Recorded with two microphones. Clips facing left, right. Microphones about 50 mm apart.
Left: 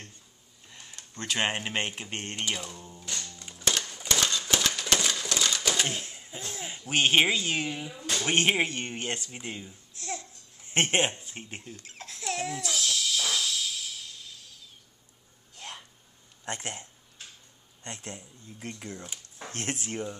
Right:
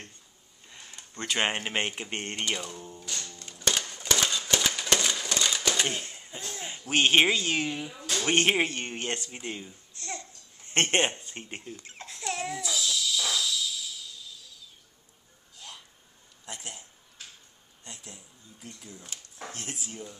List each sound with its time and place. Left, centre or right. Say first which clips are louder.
0.7 s speech: right 1 dB; centre
2.4 s speech: right 1 dB; centre
3.3 s music: right 1 dB; centre
3.7 s typewriter: right 1 dB; centre
4.2 s a sound: left 1 dB; centre
6.9 s speech: right 1 dB; centre
10.6 s babbling: even; centre
12.6 s a sound: even; left
15.5 s hiccup: left 4 dB; left
16.4 s a sound: left 6 dB; left
17.8 s speech: left 6 dB; left